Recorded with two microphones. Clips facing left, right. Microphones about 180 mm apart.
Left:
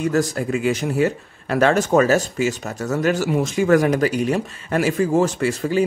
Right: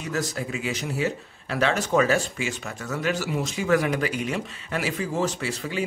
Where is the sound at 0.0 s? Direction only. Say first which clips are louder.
Left 9 dB; 45° left (ahead or behind).